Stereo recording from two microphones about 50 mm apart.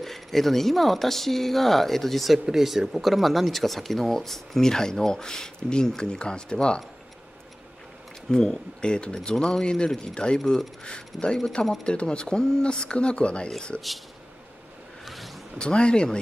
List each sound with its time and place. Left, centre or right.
0.0 s speech: centre
8.3 s speech: centre
15.0 s vehicle: centre
15.5 s speech: centre